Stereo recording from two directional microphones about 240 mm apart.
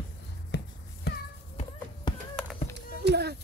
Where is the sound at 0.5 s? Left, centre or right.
Left.